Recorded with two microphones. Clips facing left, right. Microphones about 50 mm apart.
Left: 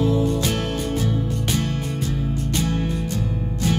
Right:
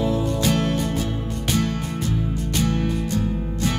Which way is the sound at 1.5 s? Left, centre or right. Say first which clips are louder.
Right 1 dB; right.